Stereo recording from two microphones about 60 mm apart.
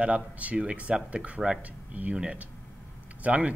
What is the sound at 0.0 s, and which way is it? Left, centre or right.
Speech, right.